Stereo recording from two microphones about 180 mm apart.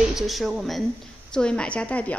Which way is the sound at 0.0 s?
Centre (ahead or behind).